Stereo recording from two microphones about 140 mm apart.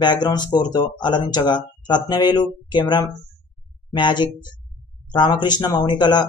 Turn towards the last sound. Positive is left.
turn(degrees=30)  # may be behind; listen again after turning